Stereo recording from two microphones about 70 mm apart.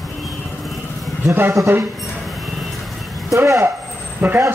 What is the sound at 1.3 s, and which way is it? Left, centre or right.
Speech, right.